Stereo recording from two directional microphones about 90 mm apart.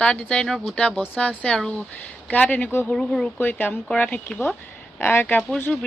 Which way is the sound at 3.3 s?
20° left (ahead or behind).